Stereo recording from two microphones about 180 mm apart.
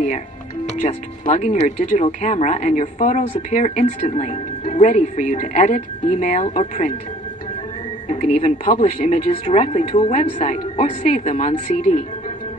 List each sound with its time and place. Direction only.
0.7 s speech: 40° left (ahead or behind)
8.1 s speech: 40° left (ahead or behind)